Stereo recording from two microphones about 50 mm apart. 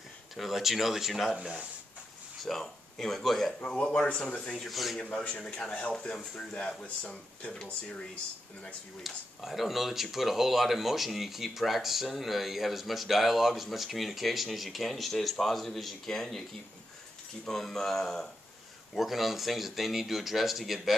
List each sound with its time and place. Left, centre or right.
0.4 s speech: centre
1.3 s speech: centre
2.4 s speech: centre
3.6 s speech: left
4.6 s speech: centre
5.2 s speech: left
5.7 s speech: left
9.0 s speech: centre
17.5 s speech: centre